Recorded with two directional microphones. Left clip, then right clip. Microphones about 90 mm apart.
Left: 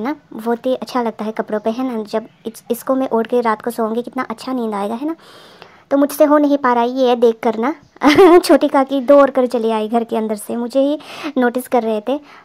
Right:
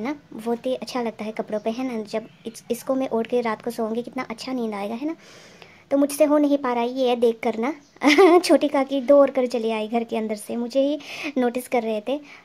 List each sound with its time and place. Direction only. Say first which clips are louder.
0.0 s a woman's voice: left 7 dB; 30° left (ahead or behind)